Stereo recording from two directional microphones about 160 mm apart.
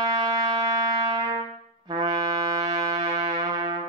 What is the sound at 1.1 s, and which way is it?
Trumpet, 25° right (ahead or behind).